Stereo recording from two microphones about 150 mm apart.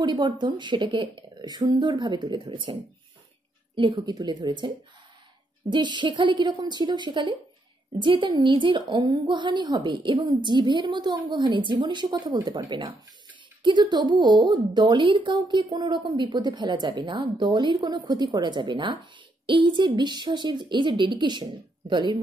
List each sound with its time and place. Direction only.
0.0 s a woman's voice: 30° right (ahead or behind)